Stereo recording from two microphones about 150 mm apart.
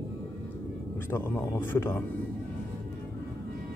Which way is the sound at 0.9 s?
15° left (ahead or behind).